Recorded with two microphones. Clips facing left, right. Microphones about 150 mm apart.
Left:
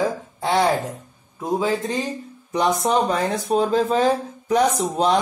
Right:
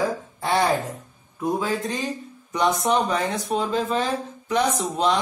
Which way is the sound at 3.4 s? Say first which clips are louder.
Left 5 dB; 35° left (ahead or behind).